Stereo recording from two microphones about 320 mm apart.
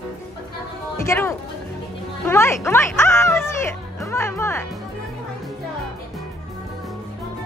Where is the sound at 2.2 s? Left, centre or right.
Centre.